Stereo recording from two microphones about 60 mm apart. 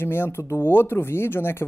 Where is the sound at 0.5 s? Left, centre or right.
Left.